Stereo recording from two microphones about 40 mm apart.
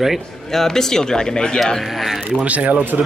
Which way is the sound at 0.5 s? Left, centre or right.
Centre.